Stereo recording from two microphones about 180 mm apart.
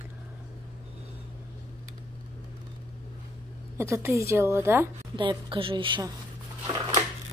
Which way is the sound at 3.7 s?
15° right (ahead or behind).